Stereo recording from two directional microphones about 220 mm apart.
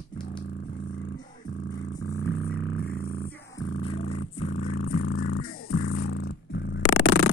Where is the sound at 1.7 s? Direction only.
15° left (ahead or behind).